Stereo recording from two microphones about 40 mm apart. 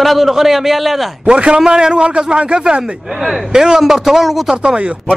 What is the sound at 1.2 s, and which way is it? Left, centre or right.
Speech, right.